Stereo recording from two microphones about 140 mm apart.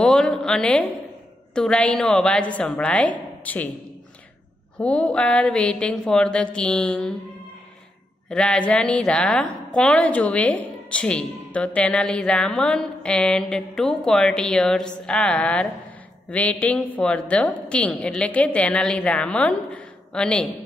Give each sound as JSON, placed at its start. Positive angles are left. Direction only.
{"t": 0.0, "sound": "a woman's voice", "side_deg": 5}
{"t": 4.7, "sound": "a woman's voice", "side_deg": 10}
{"t": 8.3, "sound": "a woman's voice", "side_deg": 5}